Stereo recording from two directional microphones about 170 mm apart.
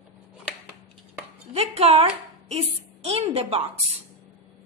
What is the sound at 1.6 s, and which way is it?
A woman's voice, 35° right (ahead or behind).